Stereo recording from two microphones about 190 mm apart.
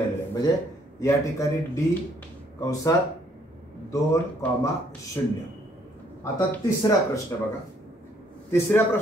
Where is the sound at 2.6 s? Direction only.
15° left (ahead or behind).